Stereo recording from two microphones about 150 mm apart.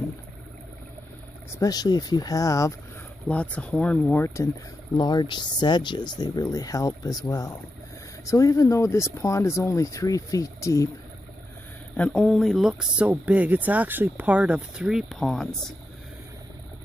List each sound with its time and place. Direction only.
1.5 s speech: 25° left (ahead or behind)
3.3 s speech: 10° left (ahead or behind)
4.9 s speech: 30° left (ahead or behind)
12.0 s speech: 5° left (ahead or behind)